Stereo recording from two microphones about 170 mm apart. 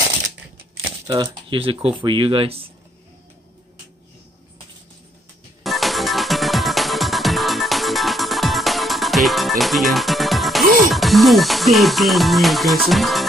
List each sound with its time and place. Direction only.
1.0 s speech: 25° right (ahead or behind)
5.6 s music: centre (ahead or behind)
10.9 s speech: centre (ahead or behind)